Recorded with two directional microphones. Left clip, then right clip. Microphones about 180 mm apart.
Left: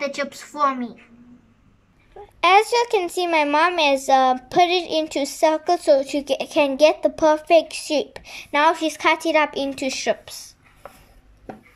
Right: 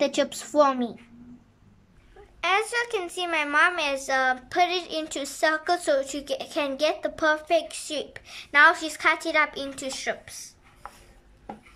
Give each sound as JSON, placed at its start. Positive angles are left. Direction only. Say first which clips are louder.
{"t": 0.0, "sound": "a woman's voice", "louder": "right 1 dB", "side_deg": -15}
{"t": 2.4, "sound": "a child's voice", "louder": "left 9 dB", "side_deg": 25}